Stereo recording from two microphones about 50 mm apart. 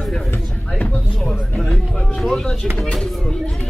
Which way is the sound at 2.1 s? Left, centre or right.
Centre.